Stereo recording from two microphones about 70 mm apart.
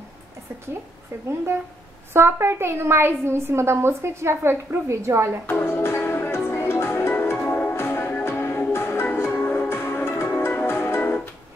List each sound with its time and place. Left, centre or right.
2.1 s a woman's voice: right
5.5 s music: left